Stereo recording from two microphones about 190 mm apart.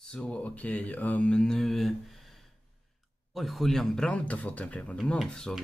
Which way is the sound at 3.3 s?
Centre (ahead or behind).